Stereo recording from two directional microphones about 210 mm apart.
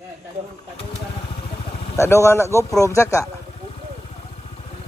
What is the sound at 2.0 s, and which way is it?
Speech, 15° left (ahead or behind).